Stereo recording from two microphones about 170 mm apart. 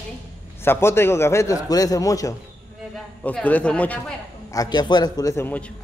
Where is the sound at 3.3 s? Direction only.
10° left (ahead or behind).